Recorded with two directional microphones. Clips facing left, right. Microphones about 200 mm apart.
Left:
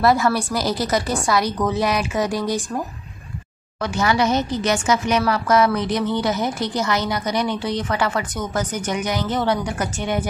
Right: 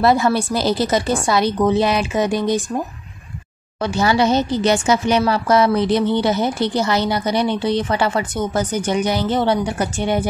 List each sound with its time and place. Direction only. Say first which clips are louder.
0.0 s a woman's voice: right 2 dB; 25° right (ahead or behind)
3.8 s a woman's voice: right 3 dB; 30° right (ahead or behind)